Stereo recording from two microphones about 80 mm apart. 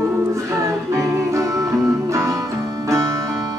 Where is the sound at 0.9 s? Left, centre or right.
Right.